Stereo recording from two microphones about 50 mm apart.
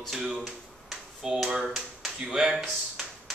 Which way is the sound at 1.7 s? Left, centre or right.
Centre.